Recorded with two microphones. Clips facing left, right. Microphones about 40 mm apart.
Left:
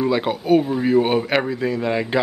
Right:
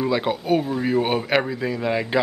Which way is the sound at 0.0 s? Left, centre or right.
Centre.